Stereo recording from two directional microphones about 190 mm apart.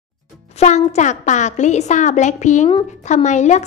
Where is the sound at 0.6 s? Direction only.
35° left (ahead or behind).